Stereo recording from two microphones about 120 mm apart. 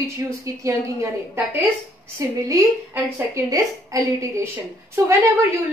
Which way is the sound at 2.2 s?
25° right (ahead or behind).